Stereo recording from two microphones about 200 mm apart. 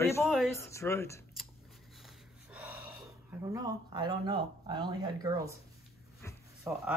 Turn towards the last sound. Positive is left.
turn(degrees=-10)  # may be behind; listen again after turning